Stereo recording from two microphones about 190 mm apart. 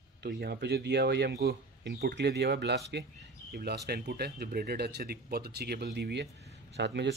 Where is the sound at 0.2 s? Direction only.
60° right (ahead or behind).